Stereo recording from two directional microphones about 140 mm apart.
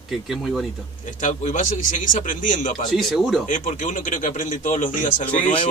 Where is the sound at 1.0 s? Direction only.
60° left (ahead or behind).